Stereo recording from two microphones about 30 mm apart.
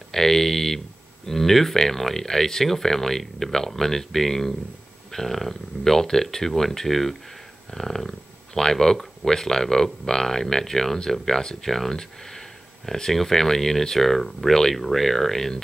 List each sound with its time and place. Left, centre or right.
0.1 s speech: centre